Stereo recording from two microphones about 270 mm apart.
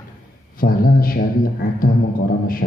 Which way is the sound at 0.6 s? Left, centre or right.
Left.